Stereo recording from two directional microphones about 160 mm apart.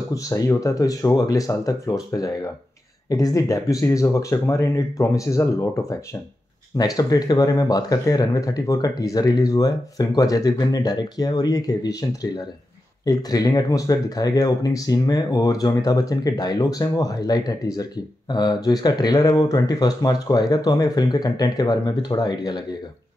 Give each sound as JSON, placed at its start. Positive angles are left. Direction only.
{"t": 0.1, "sound": "speech", "side_deg": 20}